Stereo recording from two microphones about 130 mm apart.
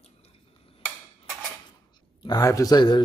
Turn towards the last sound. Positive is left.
turn(degrees=35)  # may be behind; listen again after turning